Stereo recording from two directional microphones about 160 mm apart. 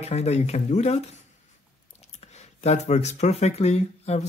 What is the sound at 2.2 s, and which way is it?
Speech, 45° left (ahead or behind).